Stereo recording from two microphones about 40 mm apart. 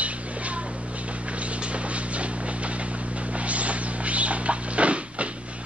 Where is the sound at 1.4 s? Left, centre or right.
Right.